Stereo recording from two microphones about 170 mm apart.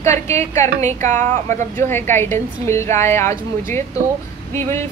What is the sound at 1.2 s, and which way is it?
Speech, 45° right (ahead or behind).